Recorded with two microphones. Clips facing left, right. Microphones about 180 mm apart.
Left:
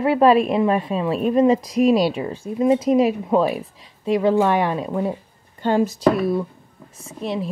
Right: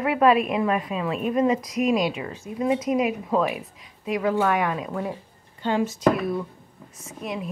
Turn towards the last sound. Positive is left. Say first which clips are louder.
# left 6 dB
turn(degrees=30)  # may be behind; listen again after turning